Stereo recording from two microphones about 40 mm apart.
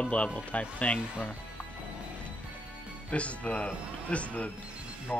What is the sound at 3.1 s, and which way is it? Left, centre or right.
Speech, left.